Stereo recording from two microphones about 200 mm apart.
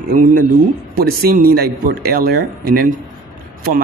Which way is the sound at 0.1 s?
45° right (ahead or behind).